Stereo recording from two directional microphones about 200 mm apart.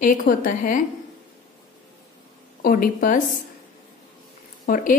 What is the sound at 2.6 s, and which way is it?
Speech, 45° left (ahead or behind).